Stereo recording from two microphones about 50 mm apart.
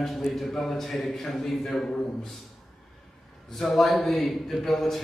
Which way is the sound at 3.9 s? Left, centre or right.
Centre.